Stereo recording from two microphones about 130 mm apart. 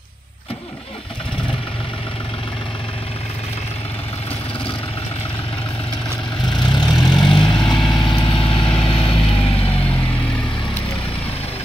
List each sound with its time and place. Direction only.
6.5 s vehicle: 35° left (ahead or behind)
7.5 s vehicle: 5° left (ahead or behind)
7.9 s vehicle: 40° left (ahead or behind)